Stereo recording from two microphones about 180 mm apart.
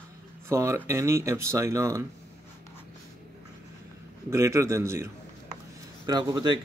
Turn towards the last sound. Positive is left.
turn(degrees=-25)  # may be behind; listen again after turning